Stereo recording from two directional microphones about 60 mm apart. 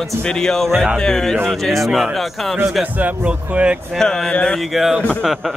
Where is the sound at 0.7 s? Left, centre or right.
Centre.